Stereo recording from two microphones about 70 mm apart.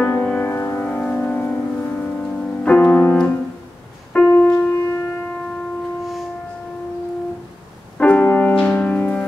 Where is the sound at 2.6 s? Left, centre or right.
Centre.